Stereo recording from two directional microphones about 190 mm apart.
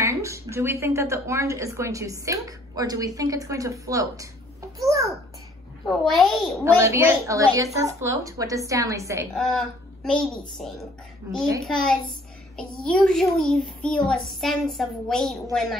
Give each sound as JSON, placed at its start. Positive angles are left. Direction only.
{"t": 0.0, "sound": "a woman's voice", "side_deg": -15}
{"t": 4.7, "sound": "babbling", "side_deg": -15}
{"t": 5.9, "sound": "a child's voice", "side_deg": 0}
{"t": 6.8, "sound": "a woman's voice", "side_deg": -15}
{"t": 9.3, "sound": "a child's voice", "side_deg": 0}
{"t": 11.3, "sound": "a woman's voice", "side_deg": -15}
{"t": 11.6, "sound": "a child's voice", "side_deg": 5}